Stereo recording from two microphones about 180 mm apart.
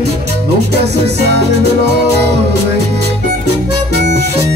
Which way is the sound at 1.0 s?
65° right (ahead or behind).